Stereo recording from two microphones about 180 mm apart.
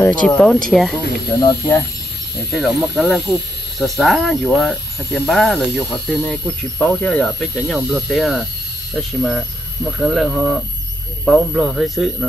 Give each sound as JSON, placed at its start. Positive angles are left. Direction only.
{"t": 0.0, "sound": "speech", "side_deg": 10}
{"t": 1.3, "sound": "speech", "side_deg": 15}
{"t": 2.5, "sound": "speech", "side_deg": 0}